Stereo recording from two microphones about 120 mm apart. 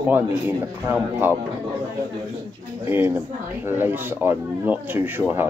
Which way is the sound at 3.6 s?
20° right (ahead or behind).